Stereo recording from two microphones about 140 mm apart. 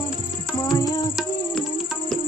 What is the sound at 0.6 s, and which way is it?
Music, 30° left (ahead or behind).